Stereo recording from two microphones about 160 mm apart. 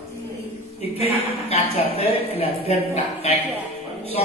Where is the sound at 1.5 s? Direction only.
40° left (ahead or behind).